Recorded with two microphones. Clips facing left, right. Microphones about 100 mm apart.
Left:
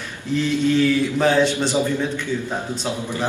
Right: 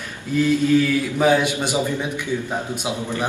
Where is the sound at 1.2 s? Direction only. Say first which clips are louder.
Right 2 dB; 10° right (ahead or behind).